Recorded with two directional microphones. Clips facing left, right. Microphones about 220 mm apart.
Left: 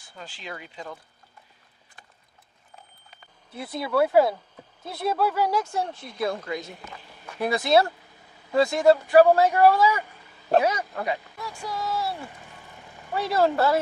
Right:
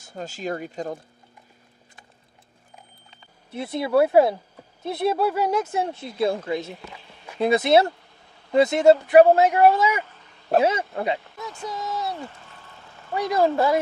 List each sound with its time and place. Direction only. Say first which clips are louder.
0.0 s speech: right 10 dB; 45° right (ahead or behind)
3.1 s speech: right 8 dB; 25° right (ahead or behind)
6.7 s speech: right 3 dB; centre (ahead or behind)
7.3 s speech: right 3 dB; 20° right (ahead or behind)
10.0 s a sound: left 1 dB; 10° left (ahead or behind)
10.6 s speech: right 4 dB; 25° right (ahead or behind)
12.3 s vehicle: left 1 dB; 15° left (ahead or behind)
13.1 s speech: right 1 dB; 15° right (ahead or behind)